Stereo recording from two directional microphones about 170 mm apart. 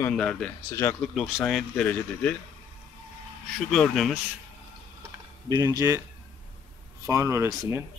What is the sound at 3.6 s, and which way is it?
Speech, centre (ahead or behind).